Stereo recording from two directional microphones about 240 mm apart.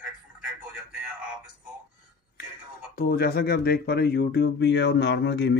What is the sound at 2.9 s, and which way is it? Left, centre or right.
Speech, left.